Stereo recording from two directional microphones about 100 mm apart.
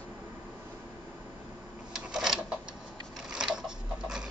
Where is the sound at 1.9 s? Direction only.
5° right (ahead or behind).